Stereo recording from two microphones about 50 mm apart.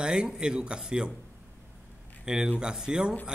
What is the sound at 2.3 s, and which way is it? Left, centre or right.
Speech, centre.